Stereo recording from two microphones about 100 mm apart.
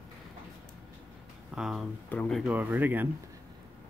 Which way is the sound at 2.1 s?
15° left (ahead or behind).